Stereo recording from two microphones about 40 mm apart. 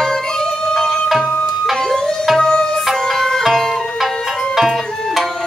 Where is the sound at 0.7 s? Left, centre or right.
Centre.